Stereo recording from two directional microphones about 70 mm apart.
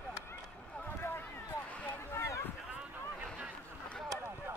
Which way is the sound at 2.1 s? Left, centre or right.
Left.